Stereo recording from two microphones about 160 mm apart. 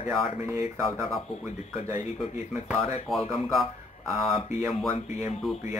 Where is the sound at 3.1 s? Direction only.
Centre (ahead or behind).